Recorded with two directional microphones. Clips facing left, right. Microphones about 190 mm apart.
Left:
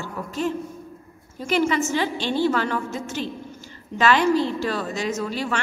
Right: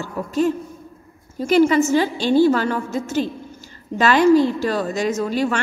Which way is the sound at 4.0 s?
40° right (ahead or behind).